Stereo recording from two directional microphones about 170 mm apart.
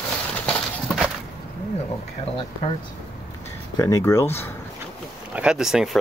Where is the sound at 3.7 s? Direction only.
20° left (ahead or behind).